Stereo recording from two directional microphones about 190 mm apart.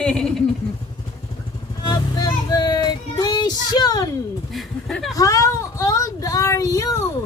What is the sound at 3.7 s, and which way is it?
Speech, 20° left (ahead or behind).